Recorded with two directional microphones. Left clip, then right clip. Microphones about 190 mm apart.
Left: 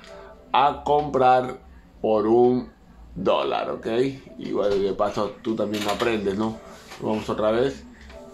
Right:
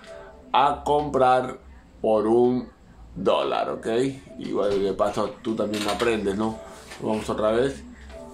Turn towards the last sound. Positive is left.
turn(degrees=0)  # may be behind; listen again after turning